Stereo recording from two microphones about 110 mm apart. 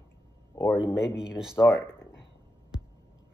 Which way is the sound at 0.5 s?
25° left (ahead or behind).